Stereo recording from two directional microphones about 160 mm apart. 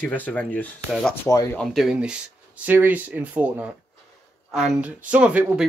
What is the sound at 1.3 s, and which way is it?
Speech, 20° left (ahead or behind).